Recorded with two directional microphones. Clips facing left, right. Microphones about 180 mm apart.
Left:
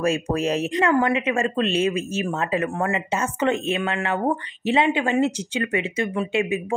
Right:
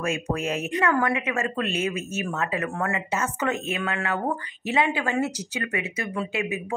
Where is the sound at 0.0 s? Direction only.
35° left (ahead or behind).